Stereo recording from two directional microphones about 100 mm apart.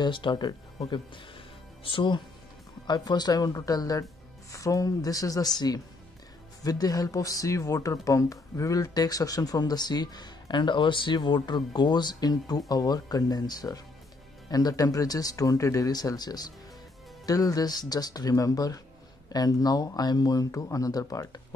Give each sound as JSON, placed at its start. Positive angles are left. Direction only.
{"t": 0.0, "sound": "speech", "side_deg": 50}